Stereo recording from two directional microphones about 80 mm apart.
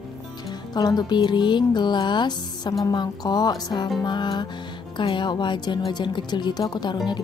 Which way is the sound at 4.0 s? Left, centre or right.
Left.